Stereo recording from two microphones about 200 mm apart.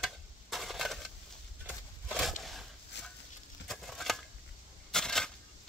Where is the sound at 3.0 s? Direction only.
60° left (ahead or behind).